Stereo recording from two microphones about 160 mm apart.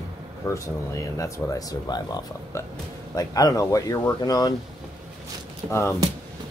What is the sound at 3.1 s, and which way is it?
Speech, 20° left (ahead or behind).